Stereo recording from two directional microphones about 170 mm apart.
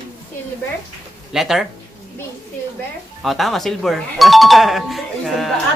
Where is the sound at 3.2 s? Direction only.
Centre (ahead or behind).